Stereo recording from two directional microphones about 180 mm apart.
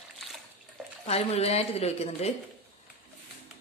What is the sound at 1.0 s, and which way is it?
A woman's voice, 35° left (ahead or behind).